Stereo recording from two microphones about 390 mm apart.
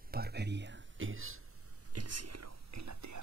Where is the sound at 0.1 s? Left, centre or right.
Right.